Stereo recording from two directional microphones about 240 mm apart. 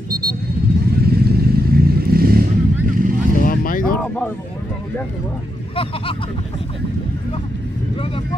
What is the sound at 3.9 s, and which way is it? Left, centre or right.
Speech, centre.